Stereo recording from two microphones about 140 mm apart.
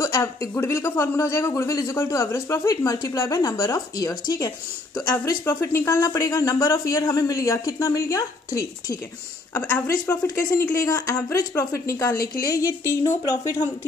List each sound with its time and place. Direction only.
0.0 s speech: 20° left (ahead or behind)
5.1 s speech: 15° left (ahead or behind)
9.5 s speech: 10° left (ahead or behind)
10.2 s speech: 25° left (ahead or behind)
12.2 s a woman's voice: 90° left
12.5 s speech: 25° left (ahead or behind)